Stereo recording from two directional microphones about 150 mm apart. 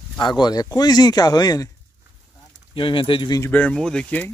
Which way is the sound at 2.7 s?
35° left (ahead or behind).